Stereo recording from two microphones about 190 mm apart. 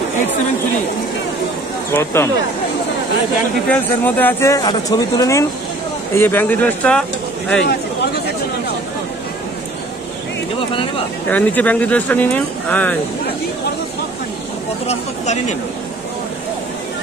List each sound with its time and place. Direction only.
1.9 s speech: 15° left (ahead or behind)
3.6 s speech: 10° left (ahead or behind)
7.6 s speech: 60° left (ahead or behind)
11.2 s speech: 10° left (ahead or behind)
14.9 s speech: 35° left (ahead or behind)